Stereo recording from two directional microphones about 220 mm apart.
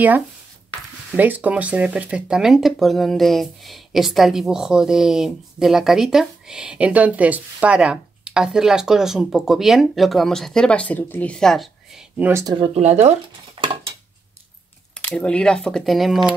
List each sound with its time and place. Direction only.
1.1 s speech: 5° right (ahead or behind)
12.3 s speech: 15° right (ahead or behind)
12.7 s speech: 30° right (ahead or behind)
15.0 s speech: 5° left (ahead or behind)